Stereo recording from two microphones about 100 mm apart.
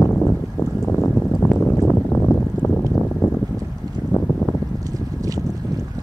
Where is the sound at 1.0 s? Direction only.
25° left (ahead or behind).